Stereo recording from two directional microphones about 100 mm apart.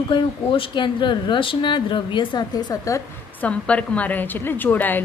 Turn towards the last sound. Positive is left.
turn(degrees=20)  # may be behind; listen again after turning